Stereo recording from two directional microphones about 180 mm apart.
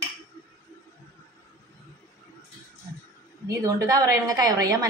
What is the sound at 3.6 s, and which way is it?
A woman's voice, 20° right (ahead or behind).